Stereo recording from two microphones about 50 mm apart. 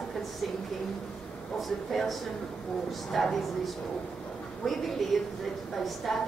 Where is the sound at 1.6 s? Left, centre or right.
Centre.